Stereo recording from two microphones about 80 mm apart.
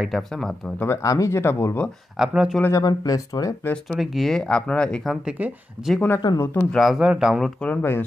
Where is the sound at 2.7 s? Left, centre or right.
Left.